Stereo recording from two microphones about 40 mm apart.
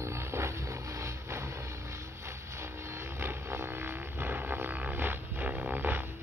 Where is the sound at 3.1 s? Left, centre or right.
Right.